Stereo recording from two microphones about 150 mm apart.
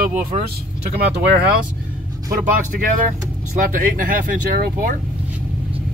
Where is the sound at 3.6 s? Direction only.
65° right (ahead or behind).